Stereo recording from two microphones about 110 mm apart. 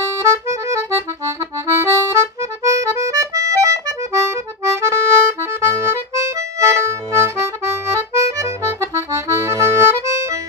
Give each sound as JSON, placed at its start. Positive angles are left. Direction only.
{"t": 0.2, "sound": "accordion", "side_deg": -25}